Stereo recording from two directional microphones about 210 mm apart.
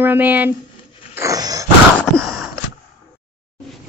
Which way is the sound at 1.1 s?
15° right (ahead or behind).